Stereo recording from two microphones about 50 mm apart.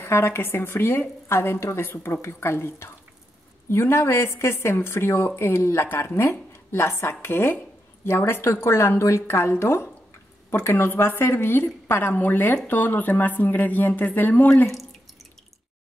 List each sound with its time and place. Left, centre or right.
0.0 s a woman's voice: left
7.5 s a woman's voice: left